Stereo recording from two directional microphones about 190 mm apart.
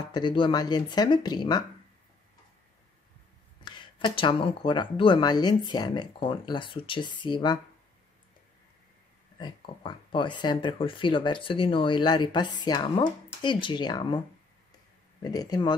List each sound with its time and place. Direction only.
0.1 s speech: 25° left (ahead or behind)
3.6 s speech: 25° left (ahead or behind)
9.4 s speech: 25° left (ahead or behind)
15.2 s speech: 20° left (ahead or behind)